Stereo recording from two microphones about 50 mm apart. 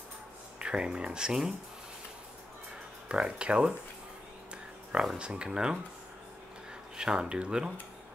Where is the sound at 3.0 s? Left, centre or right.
Centre.